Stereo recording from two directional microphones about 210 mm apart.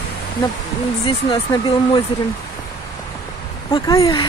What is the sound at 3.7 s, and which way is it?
Speech, 15° left (ahead or behind).